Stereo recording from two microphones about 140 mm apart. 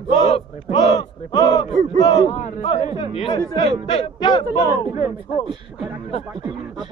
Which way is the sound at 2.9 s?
40° left (ahead or behind).